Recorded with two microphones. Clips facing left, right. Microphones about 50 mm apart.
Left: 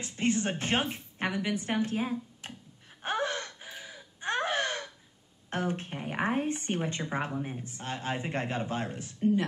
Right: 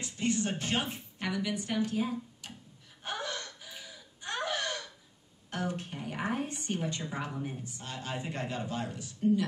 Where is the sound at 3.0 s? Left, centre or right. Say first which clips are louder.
Left 6 dB; left.